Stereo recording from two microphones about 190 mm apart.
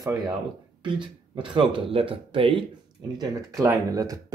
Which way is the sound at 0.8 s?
25° right (ahead or behind).